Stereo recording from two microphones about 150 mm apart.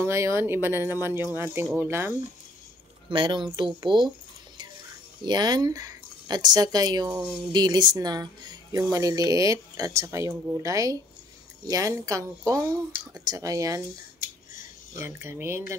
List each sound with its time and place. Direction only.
0.0 s speech: 20° right (ahead or behind)
3.1 s speech: 35° right (ahead or behind)
5.2 s speech: 30° right (ahead or behind)
7.1 s speech: 10° right (ahead or behind)
7.5 s speech: 30° right (ahead or behind)
15.0 s speech: 15° right (ahead or behind)